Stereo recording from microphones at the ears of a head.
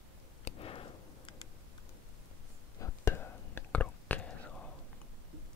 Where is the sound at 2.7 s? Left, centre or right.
Left.